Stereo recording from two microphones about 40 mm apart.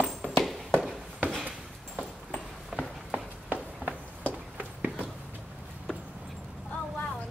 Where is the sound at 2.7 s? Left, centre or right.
Centre.